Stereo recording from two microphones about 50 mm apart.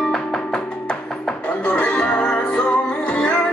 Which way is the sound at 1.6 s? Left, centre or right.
Left.